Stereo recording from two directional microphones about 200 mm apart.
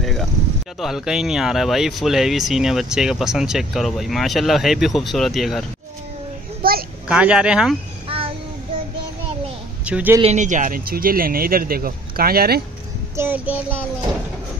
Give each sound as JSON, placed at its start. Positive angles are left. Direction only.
{"t": 0.0, "sound": "a sound", "side_deg": 0}
{"t": 0.7, "sound": "speech", "side_deg": 0}
{"t": 6.6, "sound": "a sound", "side_deg": -50}
{"t": 7.1, "sound": "speech", "side_deg": -5}
{"t": 8.1, "sound": "child singing", "side_deg": -25}
{"t": 9.8, "sound": "child singing", "side_deg": -10}
{"t": 10.2, "sound": "speech", "side_deg": -35}
{"t": 13.1, "sound": "child singing", "side_deg": -10}